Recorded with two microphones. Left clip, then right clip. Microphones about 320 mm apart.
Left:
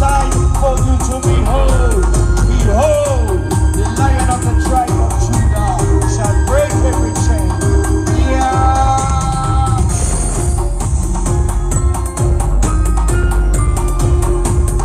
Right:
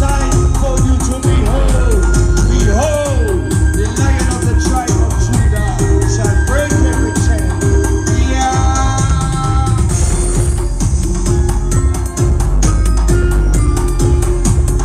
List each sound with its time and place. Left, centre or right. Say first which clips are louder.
0.7 s music: left 2 dB; left
2.8 s music: left 4 dB; left
6.5 s music: left 3 dB; left
7.6 s music: right 2 dB; centre
8.5 s music: left 5 dB; left